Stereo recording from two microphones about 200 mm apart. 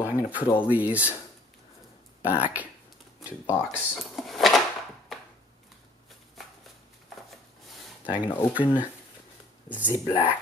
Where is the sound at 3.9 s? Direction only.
Centre (ahead or behind).